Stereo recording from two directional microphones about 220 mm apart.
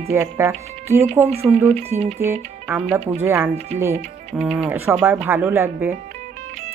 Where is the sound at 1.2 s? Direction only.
25° right (ahead or behind).